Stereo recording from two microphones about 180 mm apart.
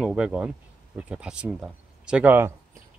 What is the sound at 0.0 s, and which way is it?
Speech, 5° right (ahead or behind).